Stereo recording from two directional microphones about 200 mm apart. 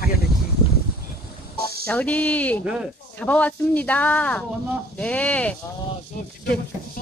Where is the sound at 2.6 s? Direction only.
5° right (ahead or behind).